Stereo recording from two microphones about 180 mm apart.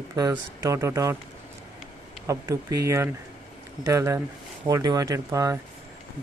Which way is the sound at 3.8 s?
20° right (ahead or behind).